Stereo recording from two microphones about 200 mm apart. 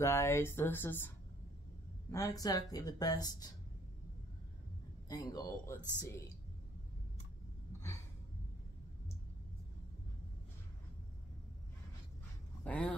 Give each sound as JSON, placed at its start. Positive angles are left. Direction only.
{"t": 0.0, "sound": "speech", "side_deg": 15}
{"t": 5.0, "sound": "speech", "side_deg": 20}
{"t": 12.6, "sound": "speech", "side_deg": 5}